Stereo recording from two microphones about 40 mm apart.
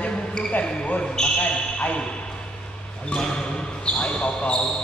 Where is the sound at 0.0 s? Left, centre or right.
Left.